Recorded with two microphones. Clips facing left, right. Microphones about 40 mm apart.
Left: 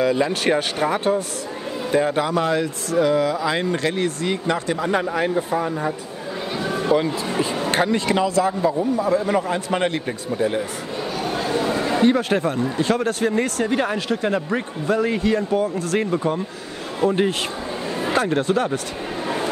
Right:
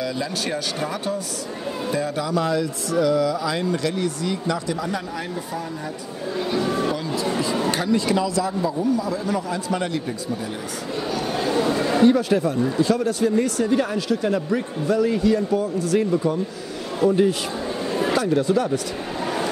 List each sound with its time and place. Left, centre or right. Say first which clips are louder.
0.0 s speech: left 7 dB; left
7.7 s speech: left 4 dB; left
11.3 s a sound: right 1 dB; centre
12.0 s speech: right 1 dB; left